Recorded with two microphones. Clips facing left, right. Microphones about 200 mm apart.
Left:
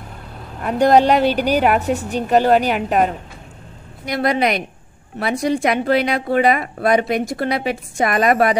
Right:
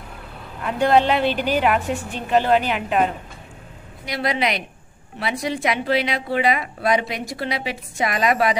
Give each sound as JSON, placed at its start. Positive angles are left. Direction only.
{"t": 0.6, "sound": "a woman's voice", "side_deg": 40}